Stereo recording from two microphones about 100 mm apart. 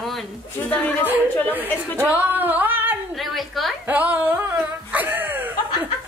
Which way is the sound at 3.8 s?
15° right (ahead or behind).